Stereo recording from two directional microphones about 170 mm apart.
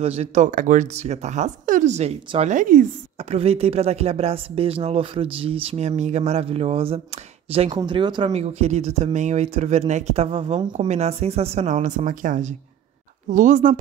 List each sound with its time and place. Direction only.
0.0 s speech: 40° right (ahead or behind)
3.3 s speech: 35° right (ahead or behind)